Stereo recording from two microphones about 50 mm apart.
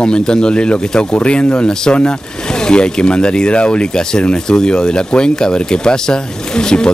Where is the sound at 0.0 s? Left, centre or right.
Centre.